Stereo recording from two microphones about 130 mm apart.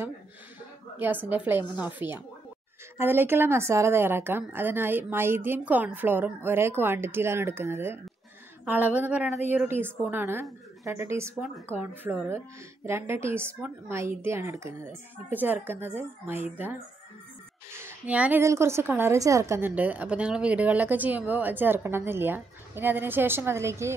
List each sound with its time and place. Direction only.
0.9 s a woman's voice: 15° right (ahead or behind)
17.7 s a sound: 15° right (ahead or behind)
18.4 s a woman's voice: 20° right (ahead or behind)